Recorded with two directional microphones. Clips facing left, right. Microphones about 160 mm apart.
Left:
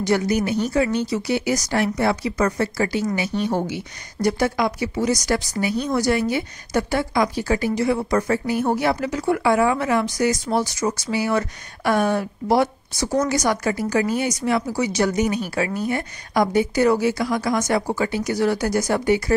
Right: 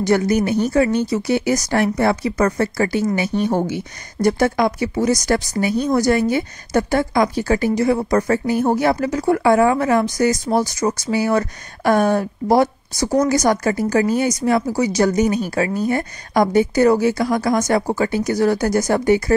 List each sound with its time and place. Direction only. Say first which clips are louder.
0.0 s speech: right 4 dB; 50° right (ahead or behind)